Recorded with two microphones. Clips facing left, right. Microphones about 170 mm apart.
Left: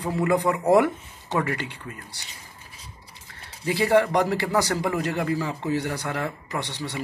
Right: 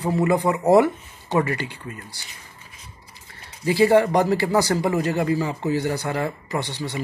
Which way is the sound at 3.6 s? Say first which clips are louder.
Right 4 dB; 15° right (ahead or behind).